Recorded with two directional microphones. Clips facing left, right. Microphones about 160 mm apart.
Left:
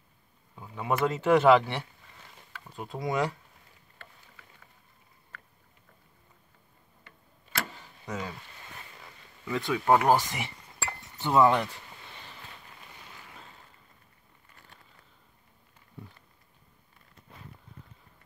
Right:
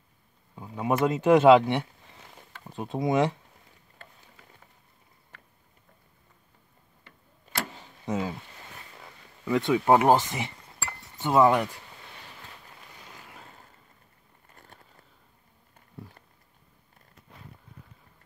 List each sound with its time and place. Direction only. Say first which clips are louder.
0.6 s speech: right 3 dB; 15° right (ahead or behind)
8.0 s speech: right 6 dB; 25° right (ahead or behind)
9.5 s speech: right 3 dB; 20° right (ahead or behind)